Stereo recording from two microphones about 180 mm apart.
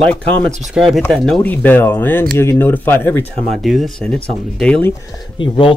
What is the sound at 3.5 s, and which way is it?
Speech, centre (ahead or behind).